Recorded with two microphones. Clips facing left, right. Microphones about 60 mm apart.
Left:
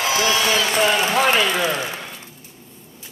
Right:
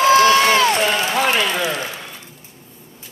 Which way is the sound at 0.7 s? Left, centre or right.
Centre.